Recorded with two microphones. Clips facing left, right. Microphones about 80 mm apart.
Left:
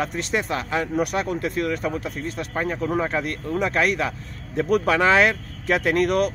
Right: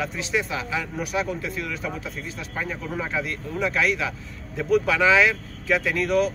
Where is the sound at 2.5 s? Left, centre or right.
Left.